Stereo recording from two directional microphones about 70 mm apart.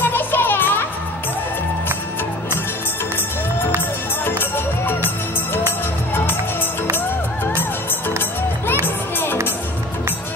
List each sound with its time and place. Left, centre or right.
0.0 s music: left
4.2 s music: left
8.8 s music: left